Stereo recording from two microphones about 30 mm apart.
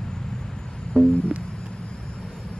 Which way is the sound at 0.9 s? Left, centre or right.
Left.